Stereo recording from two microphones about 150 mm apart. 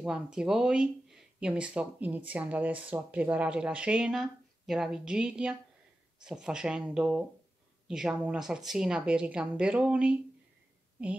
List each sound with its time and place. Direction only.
0.0 s speech: 5° right (ahead or behind)